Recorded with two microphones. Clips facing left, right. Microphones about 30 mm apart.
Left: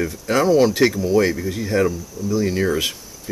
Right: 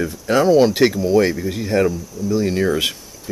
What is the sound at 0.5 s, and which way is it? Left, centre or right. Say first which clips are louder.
Speech: right 2 dB; right.